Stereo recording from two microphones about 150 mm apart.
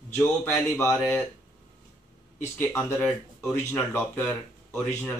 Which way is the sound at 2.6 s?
15° left (ahead or behind).